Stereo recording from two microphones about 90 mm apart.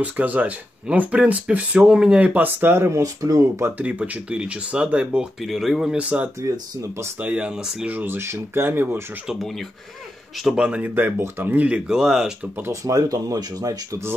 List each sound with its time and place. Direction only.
0.0 s speech: 15° right (ahead or behind)
3.0 s speech: 40° right (ahead or behind)
3.6 s speech: 15° right (ahead or behind)
5.4 s speech: centre (ahead or behind); by 6.3 s 15° right (ahead or behind)
6.4 s speech: 35° right (ahead or behind)
7.2 s speech: 15° right (ahead or behind)
10.4 s speech: 10° right (ahead or behind)
12.6 s speech: 40° right (ahead or behind)